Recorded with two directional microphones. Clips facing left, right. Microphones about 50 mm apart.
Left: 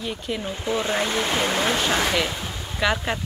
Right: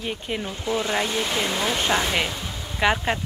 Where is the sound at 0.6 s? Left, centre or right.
Left.